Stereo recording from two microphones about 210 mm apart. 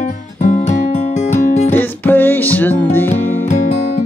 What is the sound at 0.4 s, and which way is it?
Music, 35° left (ahead or behind).